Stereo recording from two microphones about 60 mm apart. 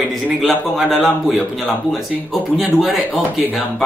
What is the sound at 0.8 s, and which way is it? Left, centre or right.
Speech, centre.